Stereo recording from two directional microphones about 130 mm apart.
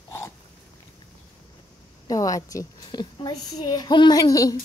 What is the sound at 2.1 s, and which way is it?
A woman's voice, 25° left (ahead or behind).